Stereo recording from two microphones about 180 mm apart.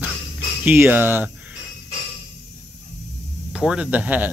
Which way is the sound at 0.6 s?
10° right (ahead or behind).